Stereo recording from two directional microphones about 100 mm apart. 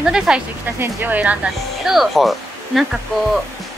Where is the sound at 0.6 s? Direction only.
20° right (ahead or behind).